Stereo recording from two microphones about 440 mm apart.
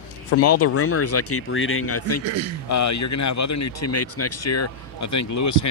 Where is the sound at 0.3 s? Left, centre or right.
Left.